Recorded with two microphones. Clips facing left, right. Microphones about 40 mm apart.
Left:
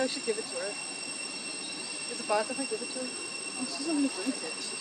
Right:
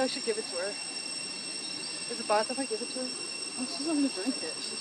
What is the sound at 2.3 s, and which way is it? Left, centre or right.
Speech, centre.